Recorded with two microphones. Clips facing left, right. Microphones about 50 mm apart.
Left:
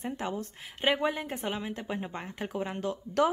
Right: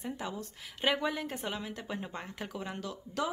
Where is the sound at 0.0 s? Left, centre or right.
Left.